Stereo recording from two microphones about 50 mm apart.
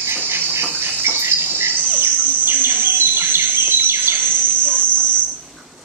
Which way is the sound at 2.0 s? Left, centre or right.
Right.